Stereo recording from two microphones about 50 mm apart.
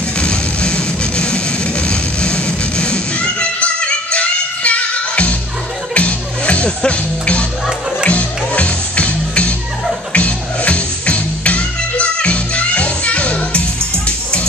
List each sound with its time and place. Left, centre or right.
0.2 s music: centre